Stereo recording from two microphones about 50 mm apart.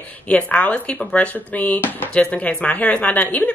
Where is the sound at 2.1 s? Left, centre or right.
Left.